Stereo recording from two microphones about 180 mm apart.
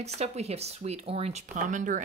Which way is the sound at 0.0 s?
35° right (ahead or behind).